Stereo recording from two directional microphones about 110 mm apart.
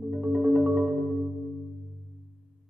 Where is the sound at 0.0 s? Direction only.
10° right (ahead or behind).